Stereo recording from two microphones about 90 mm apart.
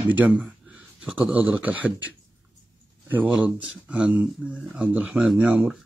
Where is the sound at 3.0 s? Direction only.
20° right (ahead or behind).